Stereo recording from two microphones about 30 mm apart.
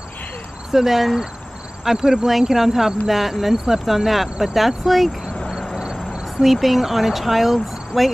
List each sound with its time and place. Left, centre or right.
0.7 s speech: centre
2.0 s speech: right
2.5 s speech: centre
6.4 s speech: centre